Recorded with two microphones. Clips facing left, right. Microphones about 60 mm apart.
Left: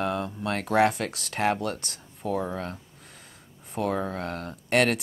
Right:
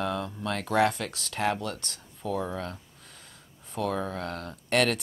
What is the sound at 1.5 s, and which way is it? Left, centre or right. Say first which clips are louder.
Speech: left 3 dB; left.